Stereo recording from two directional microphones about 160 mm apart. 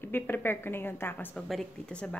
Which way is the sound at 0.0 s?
10° left (ahead or behind).